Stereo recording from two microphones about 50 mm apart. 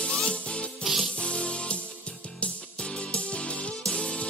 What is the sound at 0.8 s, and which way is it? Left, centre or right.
Music, centre.